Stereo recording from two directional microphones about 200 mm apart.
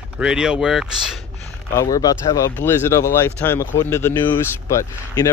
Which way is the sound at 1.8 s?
20° left (ahead or behind).